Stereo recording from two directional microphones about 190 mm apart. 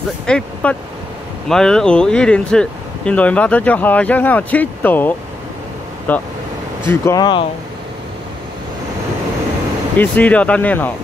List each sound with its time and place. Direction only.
0.3 s speech: 5° left (ahead or behind); by 7.4 s 20° left (ahead or behind)
9.9 s speech: 10° left (ahead or behind)